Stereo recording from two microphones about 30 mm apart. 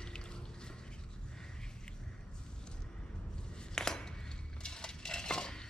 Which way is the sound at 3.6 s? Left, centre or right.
Left.